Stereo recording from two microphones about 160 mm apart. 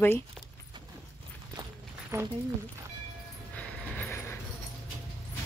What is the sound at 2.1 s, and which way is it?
Speech, 20° right (ahead or behind).